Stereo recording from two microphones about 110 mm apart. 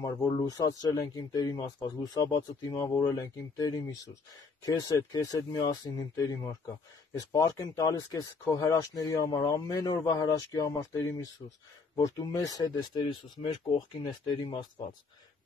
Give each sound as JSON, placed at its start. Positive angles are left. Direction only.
{"t": 0.4, "sound": "speech", "side_deg": 35}
{"t": 12.9, "sound": "speech", "side_deg": 50}